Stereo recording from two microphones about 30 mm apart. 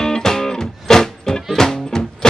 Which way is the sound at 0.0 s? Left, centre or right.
Centre.